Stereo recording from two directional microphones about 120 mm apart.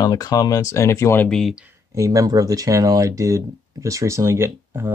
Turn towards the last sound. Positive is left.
turn(degrees=-20)  # may be behind; listen again after turning